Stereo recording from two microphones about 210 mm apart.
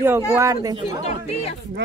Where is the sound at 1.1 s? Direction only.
30° left (ahead or behind).